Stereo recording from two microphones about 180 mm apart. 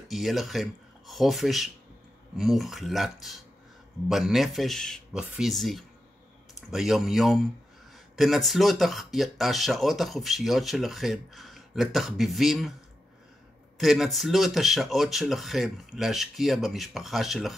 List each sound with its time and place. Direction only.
0.1 s speech: centre (ahead or behind)
13.7 s speech: centre (ahead or behind)